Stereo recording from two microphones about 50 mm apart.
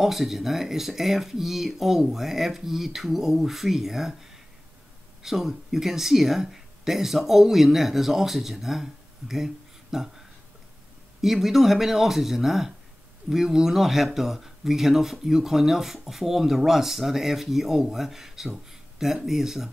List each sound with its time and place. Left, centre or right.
0.0 s speech: centre
18.7 s a sound: centre
19.2 s speech: centre